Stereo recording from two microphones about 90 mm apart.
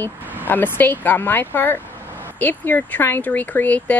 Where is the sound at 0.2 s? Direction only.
20° right (ahead or behind).